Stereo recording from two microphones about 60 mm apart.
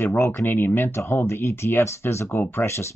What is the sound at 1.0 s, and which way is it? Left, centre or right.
Speech, left.